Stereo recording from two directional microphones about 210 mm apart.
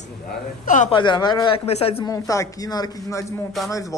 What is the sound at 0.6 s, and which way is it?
Speech, 35° left (ahead or behind).